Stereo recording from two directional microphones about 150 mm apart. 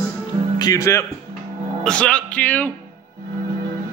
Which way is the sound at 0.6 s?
20° left (ahead or behind).